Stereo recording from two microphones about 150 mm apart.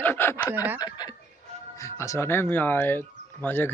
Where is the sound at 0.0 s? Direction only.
15° left (ahead or behind).